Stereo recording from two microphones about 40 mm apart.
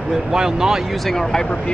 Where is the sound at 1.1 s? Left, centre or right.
Centre.